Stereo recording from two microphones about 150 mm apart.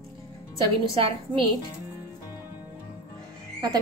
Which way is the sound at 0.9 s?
35° right (ahead or behind).